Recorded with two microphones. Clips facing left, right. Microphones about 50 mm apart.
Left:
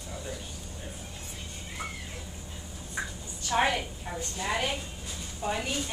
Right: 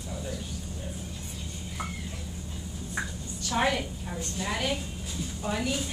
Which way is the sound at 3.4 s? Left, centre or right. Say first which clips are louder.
Left 1 dB; left.